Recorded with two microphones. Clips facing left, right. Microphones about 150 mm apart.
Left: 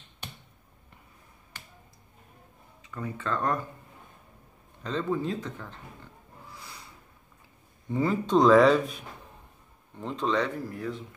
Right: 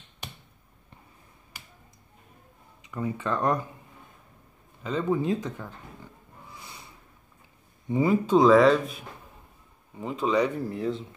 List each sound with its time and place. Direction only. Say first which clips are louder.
1.5 s finger snapping: left 1 dB; 10° right (ahead or behind)
2.8 s speech: right 4 dB; 15° right (ahead or behind)
4.8 s speech: right 3 dB; 15° right (ahead or behind)
6.5 s snort: right 1 dB; 20° right (ahead or behind)
7.9 s speech: right 3 dB; 10° right (ahead or behind)
10.7 s speech: right 5 dB; 25° right (ahead or behind)